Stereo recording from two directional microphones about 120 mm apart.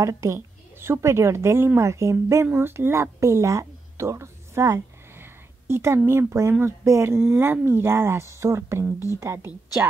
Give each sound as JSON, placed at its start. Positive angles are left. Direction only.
{"t": 0.0, "sound": "a woman's voice", "side_deg": -25}